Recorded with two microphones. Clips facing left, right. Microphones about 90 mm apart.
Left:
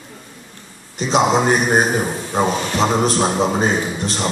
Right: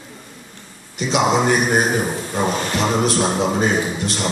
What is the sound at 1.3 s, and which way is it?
Speech, 30° left (ahead or behind).